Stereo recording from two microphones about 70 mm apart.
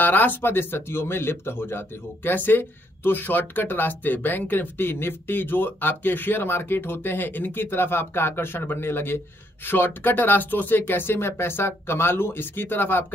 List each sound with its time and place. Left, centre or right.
0.0 s speech: left